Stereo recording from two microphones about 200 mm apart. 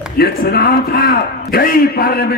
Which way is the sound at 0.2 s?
50° left (ahead or behind).